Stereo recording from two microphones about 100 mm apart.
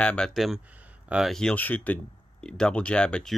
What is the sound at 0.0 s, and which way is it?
Speech, 10° left (ahead or behind).